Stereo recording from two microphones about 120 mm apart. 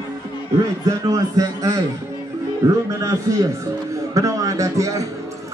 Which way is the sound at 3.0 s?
30° right (ahead or behind).